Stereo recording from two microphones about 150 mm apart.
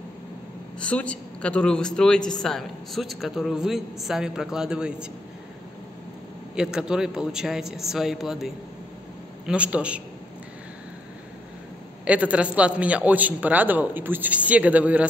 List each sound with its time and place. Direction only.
0.7 s a man's voice: 5° left (ahead or behind)
6.5 s a man's voice: 5° right (ahead or behind)
12.0 s a man's voice: 10° right (ahead or behind)